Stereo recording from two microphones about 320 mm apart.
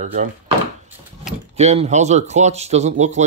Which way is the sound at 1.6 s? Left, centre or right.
Right.